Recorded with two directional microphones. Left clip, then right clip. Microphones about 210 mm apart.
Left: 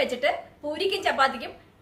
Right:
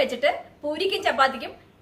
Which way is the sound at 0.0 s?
5° left (ahead or behind).